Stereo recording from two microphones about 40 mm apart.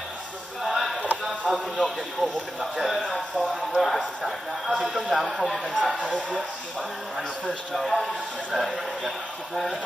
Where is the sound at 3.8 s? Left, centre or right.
Centre.